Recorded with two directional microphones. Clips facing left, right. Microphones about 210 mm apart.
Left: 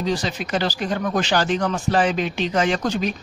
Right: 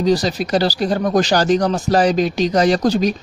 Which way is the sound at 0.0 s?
40° right (ahead or behind).